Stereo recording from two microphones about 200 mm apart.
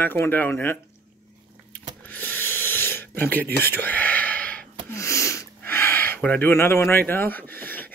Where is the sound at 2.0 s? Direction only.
10° left (ahead or behind).